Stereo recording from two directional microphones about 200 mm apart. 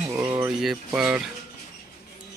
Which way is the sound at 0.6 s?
5° right (ahead or behind).